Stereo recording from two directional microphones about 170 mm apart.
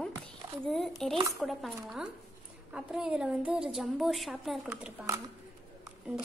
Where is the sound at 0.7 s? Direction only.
Centre (ahead or behind).